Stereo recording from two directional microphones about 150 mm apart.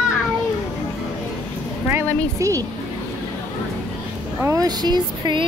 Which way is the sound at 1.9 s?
20° right (ahead or behind).